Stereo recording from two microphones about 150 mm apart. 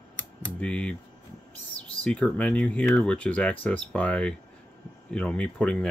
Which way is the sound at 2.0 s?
10° left (ahead or behind).